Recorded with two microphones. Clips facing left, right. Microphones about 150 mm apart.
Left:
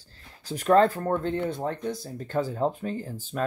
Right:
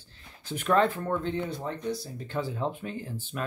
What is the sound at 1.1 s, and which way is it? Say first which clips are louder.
Speech: left 3 dB; 50° left (ahead or behind).